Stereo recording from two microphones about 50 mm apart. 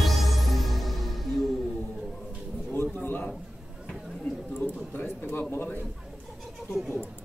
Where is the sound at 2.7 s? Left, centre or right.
Left.